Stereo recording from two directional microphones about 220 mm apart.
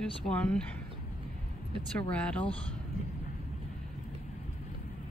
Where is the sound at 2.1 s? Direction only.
5° left (ahead or behind).